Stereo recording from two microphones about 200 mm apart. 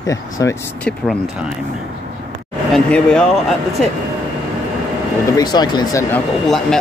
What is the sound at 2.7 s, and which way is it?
Speech, 5° left (ahead or behind).